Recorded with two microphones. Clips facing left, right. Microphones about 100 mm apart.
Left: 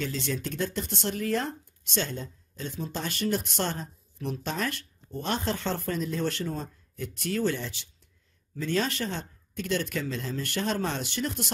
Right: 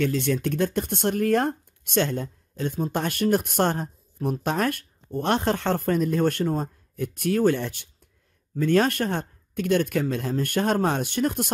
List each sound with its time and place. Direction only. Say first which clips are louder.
0.0 s speech: right 8 dB; 55° right (ahead or behind)